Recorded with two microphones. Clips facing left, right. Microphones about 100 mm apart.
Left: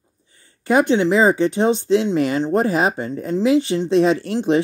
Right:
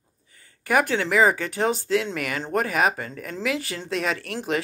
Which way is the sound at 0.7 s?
25° left (ahead or behind).